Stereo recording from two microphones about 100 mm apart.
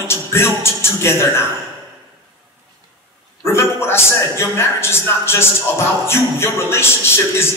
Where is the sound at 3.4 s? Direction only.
25° left (ahead or behind).